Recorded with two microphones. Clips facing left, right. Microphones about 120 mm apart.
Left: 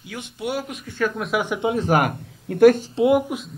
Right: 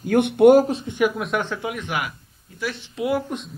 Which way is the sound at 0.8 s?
15° right (ahead or behind).